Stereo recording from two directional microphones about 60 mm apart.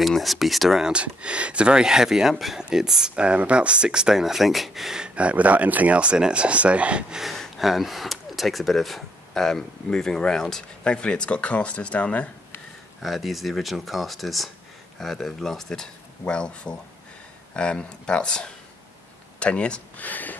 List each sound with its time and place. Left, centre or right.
0.0 s speech: centre
0.8 s speech: centre
7.2 s speech: centre; by 12.3 s left
13.0 s speech: centre; by 20.3 s left